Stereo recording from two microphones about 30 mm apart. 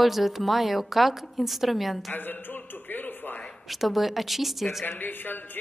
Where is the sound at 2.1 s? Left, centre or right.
Left.